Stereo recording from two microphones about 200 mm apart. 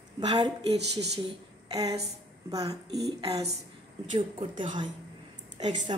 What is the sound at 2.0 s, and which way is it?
Speech, 15° right (ahead or behind).